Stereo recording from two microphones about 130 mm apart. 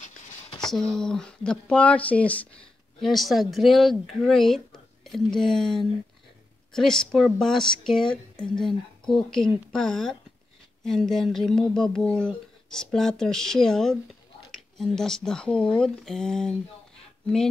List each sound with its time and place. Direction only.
0.6 s speech: 5° left (ahead or behind)
3.0 s speech: centre (ahead or behind)